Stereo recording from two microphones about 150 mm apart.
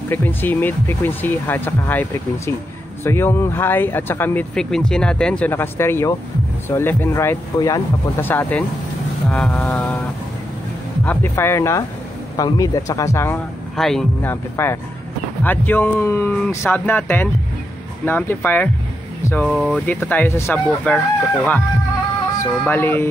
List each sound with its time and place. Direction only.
0.1 s speech: 15° left (ahead or behind)
11.1 s speech: 15° left (ahead or behind)
13.7 s speech: centre (ahead or behind)
14.2 s speech: 15° left (ahead or behind)